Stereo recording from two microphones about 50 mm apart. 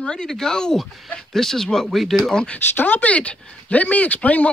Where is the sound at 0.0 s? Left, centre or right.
Centre.